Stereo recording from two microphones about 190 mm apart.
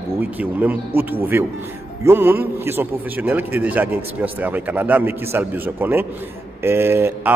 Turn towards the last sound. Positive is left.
turn(degrees=-10)  # may be behind; listen again after turning